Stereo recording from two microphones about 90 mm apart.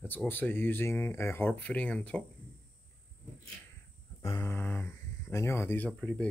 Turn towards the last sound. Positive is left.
turn(degrees=10)  # may be behind; listen again after turning